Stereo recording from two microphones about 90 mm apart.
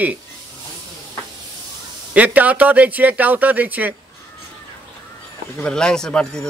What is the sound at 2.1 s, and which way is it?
Speech, 20° right (ahead or behind).